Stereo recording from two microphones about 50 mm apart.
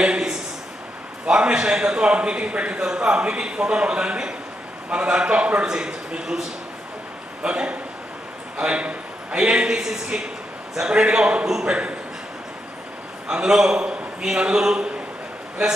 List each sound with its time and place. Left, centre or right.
0.0 s a sound: centre
1.2 s a man's voice: right
7.4 s a man's voice: right
13.3 s a man's voice: centre